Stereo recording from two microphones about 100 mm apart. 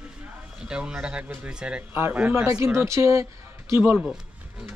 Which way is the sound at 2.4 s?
30° right (ahead or behind).